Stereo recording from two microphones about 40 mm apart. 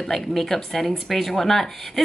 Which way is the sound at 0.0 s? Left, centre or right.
Centre.